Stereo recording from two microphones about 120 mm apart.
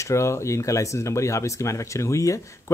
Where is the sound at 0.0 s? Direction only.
25° left (ahead or behind).